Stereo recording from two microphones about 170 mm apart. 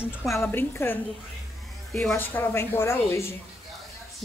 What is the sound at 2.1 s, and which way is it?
A woman's voice, 10° left (ahead or behind).